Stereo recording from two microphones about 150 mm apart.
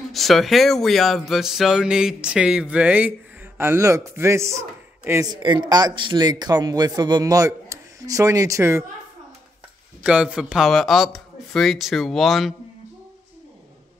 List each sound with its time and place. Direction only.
0.1 s speech: centre (ahead or behind); by 5.3 s 20° right (ahead or behind)
5.3 s speech: 30° right (ahead or behind)
10.0 s speech: 5° right (ahead or behind)